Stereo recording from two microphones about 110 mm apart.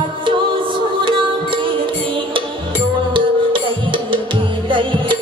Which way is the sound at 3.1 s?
50° right (ahead or behind).